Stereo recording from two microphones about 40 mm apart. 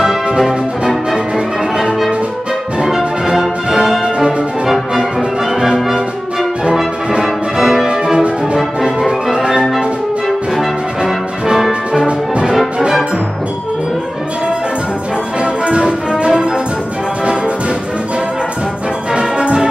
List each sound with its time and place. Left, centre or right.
0.4 s music: centre
2.8 s music: centre
7.1 s music: centre
7.9 s music: right
10.2 s music: centre
15.4 s music: right
19.1 s music: right